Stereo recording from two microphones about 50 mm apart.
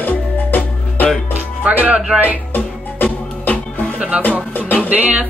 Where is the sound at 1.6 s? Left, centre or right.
Right.